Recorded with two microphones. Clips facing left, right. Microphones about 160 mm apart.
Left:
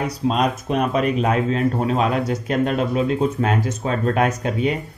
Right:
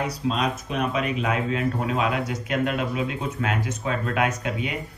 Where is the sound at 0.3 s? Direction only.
45° left (ahead or behind).